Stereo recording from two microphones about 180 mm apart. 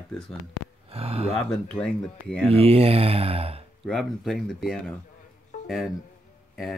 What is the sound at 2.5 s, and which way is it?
Speech, 35° right (ahead or behind).